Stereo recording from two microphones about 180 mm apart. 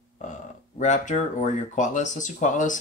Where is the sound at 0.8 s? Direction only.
40° left (ahead or behind).